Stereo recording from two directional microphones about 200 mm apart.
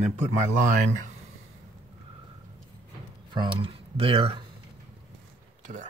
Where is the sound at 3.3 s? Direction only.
25° right (ahead or behind).